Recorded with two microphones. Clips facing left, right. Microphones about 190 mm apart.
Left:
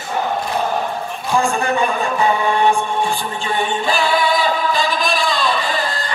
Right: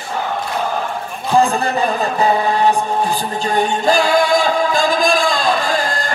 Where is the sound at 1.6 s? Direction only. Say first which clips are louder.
Right 1 dB; 35° right (ahead or behind).